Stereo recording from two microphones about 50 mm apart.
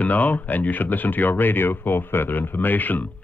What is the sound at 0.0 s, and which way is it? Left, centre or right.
Speech, left.